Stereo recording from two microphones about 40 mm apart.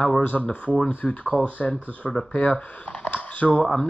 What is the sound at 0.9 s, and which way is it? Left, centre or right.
Speech, left.